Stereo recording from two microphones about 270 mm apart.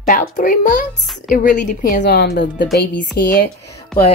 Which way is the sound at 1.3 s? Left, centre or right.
Left.